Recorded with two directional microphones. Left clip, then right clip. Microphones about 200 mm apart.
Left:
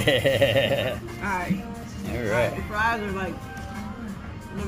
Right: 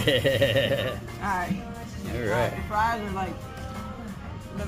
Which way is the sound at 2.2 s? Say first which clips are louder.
Left 2 dB; 5° right (ahead or behind).